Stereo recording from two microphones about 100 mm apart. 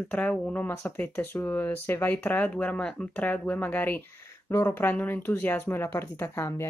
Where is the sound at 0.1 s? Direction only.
15° left (ahead or behind).